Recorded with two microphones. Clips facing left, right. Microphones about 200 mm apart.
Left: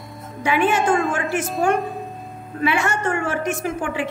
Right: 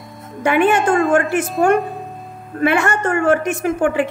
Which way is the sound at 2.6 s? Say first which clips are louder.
Right 4 dB; 55° right (ahead or behind).